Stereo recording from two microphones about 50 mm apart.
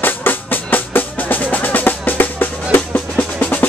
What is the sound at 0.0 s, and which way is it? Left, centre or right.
Drum, left.